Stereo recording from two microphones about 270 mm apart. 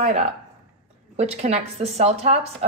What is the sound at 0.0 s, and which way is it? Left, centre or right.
A woman's voice, right.